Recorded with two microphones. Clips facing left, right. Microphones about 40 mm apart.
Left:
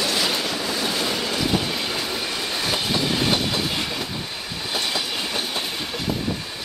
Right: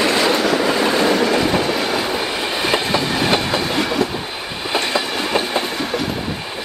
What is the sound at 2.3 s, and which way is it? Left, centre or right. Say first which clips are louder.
Train: right 6 dB; right.